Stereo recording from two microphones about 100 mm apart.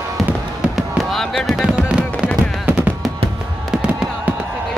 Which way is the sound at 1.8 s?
10° right (ahead or behind).